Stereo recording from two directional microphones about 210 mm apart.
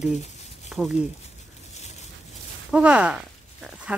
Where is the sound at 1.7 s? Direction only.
30° left (ahead or behind).